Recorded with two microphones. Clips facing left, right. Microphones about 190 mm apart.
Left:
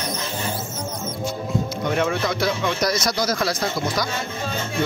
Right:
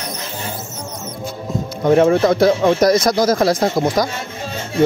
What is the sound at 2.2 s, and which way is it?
Speech, 50° right (ahead or behind).